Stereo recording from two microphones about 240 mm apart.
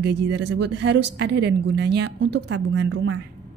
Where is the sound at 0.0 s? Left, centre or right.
Right.